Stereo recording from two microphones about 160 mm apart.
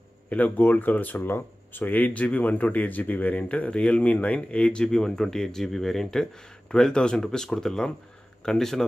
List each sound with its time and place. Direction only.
0.3 s speech: 10° left (ahead or behind)